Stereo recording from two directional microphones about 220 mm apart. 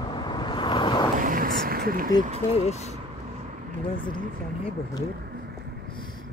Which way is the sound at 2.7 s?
30° left (ahead or behind).